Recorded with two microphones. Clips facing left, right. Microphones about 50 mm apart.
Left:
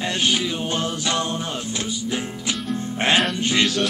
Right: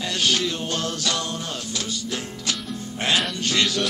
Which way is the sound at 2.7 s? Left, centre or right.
Left.